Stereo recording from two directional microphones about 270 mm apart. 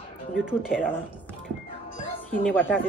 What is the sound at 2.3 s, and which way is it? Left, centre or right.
Speech, centre.